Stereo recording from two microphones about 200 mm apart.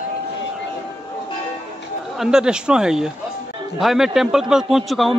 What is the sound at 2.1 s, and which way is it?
A man's voice, 5° right (ahead or behind).